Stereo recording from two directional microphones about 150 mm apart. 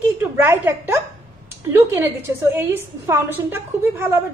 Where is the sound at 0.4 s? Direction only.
15° right (ahead or behind).